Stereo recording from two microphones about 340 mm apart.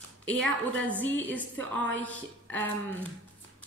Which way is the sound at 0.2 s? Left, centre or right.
Centre.